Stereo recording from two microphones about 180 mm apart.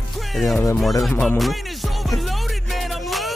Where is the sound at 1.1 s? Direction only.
10° left (ahead or behind).